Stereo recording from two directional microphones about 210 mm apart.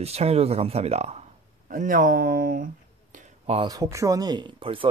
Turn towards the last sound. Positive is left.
turn(degrees=-25)  # may be behind; listen again after turning